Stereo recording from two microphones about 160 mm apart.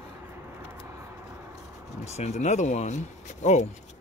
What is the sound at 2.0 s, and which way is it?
Speech, 45° left (ahead or behind).